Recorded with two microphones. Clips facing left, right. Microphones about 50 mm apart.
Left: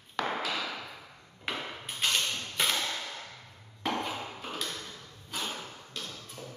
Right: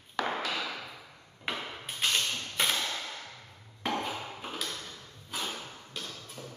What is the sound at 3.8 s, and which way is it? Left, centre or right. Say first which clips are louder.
Ping: even; centre.